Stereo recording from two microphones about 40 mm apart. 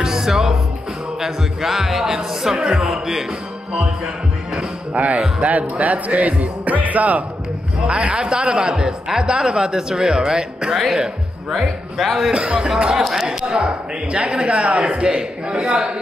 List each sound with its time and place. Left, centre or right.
0.0 s music: centre
1.2 s speech: centre
2.5 s a man's voice: right
2.8 s speech: centre
4.9 s speech: right
7.8 s a man's voice: right; by 12.3 s centre
12.3 s a man's voice: right
12.6 s a man's voice: centre